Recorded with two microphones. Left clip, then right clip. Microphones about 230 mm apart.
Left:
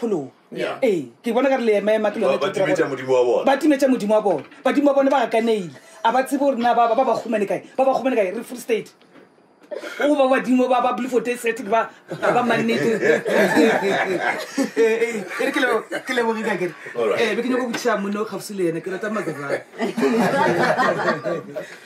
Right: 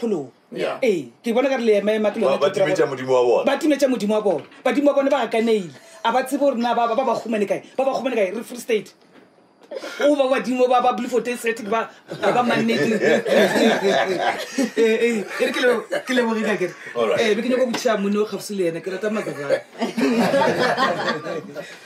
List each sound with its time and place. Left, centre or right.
0.7 s speech: centre
3.0 s speech: right
3.3 s speech: centre